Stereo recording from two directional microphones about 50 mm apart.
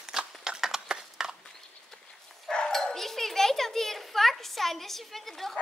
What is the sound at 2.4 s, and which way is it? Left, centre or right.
Bow-wow, centre.